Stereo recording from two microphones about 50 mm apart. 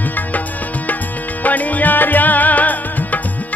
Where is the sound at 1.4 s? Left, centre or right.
Left.